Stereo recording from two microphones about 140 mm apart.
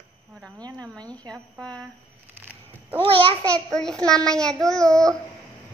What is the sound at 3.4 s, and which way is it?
A child's voice, 5° left (ahead or behind).